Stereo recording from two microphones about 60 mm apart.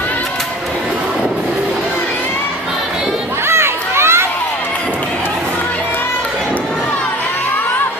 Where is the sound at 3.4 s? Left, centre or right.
Right.